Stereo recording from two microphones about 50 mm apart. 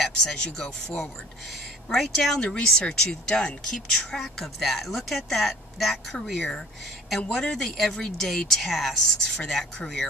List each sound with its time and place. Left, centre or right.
0.0 s speech: centre
7.2 s speech: centre